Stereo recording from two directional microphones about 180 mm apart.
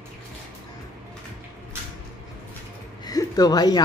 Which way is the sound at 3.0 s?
20° left (ahead or behind).